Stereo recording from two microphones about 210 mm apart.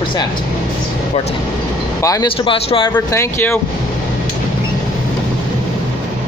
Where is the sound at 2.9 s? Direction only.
10° left (ahead or behind).